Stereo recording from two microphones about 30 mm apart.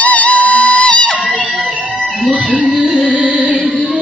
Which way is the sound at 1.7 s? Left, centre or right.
Right.